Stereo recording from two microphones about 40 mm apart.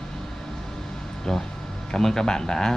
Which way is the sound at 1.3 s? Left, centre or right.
Centre.